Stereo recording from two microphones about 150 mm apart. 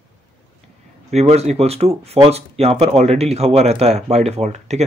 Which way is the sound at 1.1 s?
45° right (ahead or behind).